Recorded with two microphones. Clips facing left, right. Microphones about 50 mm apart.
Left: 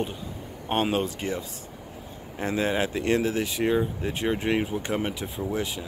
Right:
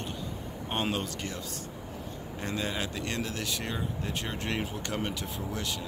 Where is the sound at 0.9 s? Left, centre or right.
Left.